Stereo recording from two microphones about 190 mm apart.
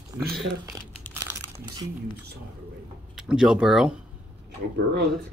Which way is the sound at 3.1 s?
5° right (ahead or behind).